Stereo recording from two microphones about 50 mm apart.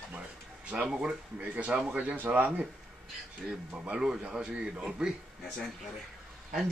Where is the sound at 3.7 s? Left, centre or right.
Centre.